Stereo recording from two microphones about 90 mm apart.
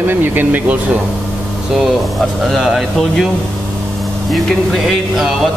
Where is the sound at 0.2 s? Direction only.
20° right (ahead or behind).